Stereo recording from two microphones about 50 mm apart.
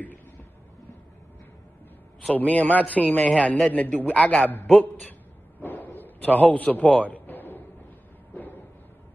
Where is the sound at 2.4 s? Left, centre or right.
Left.